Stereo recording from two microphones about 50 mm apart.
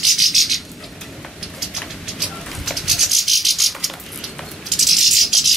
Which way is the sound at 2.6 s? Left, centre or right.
Centre.